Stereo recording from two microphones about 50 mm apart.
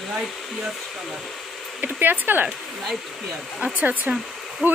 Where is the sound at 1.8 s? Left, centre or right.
Right.